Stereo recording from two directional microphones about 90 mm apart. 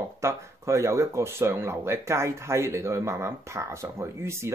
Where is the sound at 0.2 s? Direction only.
30° right (ahead or behind).